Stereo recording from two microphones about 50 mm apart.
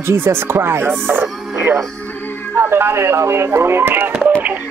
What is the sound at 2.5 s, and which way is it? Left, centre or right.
Speech, right.